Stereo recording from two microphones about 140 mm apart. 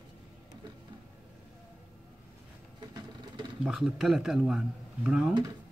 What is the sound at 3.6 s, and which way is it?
Speech, 5° right (ahead or behind).